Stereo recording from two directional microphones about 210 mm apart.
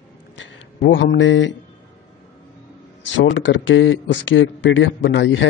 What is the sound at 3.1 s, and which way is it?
A man's voice, 65° left (ahead or behind).